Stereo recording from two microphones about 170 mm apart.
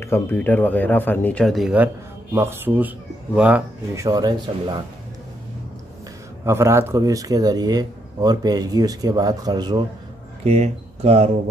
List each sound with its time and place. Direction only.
0.0 s speech: 15° left (ahead or behind); by 3.6 s 5° right (ahead or behind)
3.9 s speech: 20° right (ahead or behind)
6.4 s speech: 15° right (ahead or behind)
10.4 s speech: 40° right (ahead or behind)